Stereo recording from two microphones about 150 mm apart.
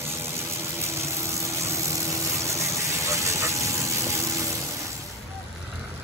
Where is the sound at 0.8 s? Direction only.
20° right (ahead or behind).